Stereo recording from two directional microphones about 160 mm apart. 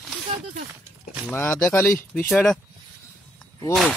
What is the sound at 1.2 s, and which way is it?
Speech, 15° left (ahead or behind).